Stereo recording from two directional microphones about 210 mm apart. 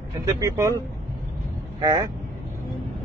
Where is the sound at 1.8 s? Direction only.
20° right (ahead or behind).